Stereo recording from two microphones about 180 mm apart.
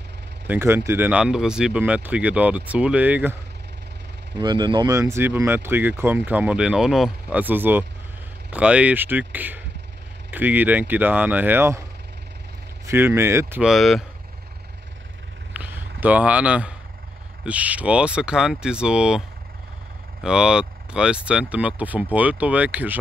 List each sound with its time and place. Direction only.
0.5 s speech: 15° right (ahead or behind)
4.4 s speech: 25° right (ahead or behind)
12.8 s speech: 15° right (ahead or behind)
13.6 s speech: centre (ahead or behind)
15.5 s a sound: 10° right (ahead or behind)
17.4 s speech: 10° right (ahead or behind)
20.2 s speech: 5° right (ahead or behind)